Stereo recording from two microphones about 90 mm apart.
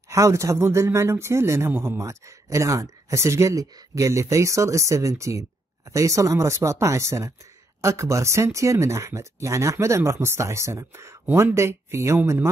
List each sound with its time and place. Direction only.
0.1 s speech: 35° right (ahead or behind)